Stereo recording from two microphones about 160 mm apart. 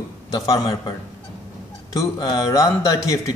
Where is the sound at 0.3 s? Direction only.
25° left (ahead or behind).